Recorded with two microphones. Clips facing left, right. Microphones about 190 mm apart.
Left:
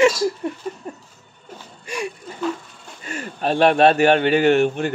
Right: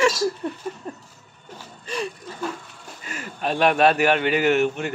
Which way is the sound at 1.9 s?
10° left (ahead or behind).